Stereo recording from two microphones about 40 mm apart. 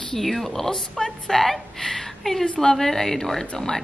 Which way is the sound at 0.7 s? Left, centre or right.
Centre.